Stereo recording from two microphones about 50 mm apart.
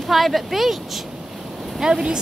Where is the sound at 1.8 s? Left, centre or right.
Centre.